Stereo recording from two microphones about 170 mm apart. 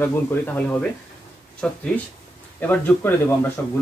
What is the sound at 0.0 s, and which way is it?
Speech, 10° left (ahead or behind).